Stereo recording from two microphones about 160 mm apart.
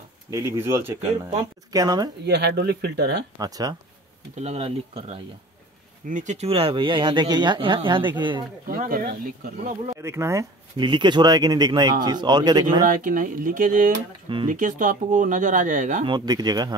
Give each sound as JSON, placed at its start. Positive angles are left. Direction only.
{"t": 0.3, "sound": "speech", "side_deg": -15}
{"t": 2.2, "sound": "speech", "side_deg": -90}
{"t": 3.3, "sound": "speech", "side_deg": -25}
{"t": 4.4, "sound": "speech", "side_deg": -40}
{"t": 6.0, "sound": "speech", "side_deg": -50}
{"t": 8.6, "sound": "speech", "side_deg": -60}
{"t": 9.9, "sound": "speech", "side_deg": -15}
{"t": 10.8, "sound": "speech", "side_deg": -30}
{"t": 12.8, "sound": "speech", "side_deg": -55}
{"t": 16.1, "sound": "speech", "side_deg": -25}